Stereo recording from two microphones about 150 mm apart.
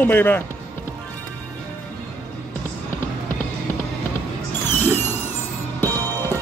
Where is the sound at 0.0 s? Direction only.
15° left (ahead or behind).